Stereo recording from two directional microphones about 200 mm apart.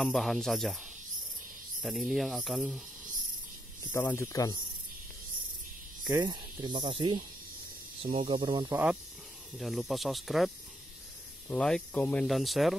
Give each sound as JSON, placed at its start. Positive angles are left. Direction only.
{"t": 0.0, "sound": "speech", "side_deg": 0}
{"t": 1.8, "sound": "speech", "side_deg": 0}
{"t": 3.9, "sound": "speech", "side_deg": 10}
{"t": 6.0, "sound": "speech", "side_deg": -20}
{"t": 9.6, "sound": "speech", "side_deg": 0}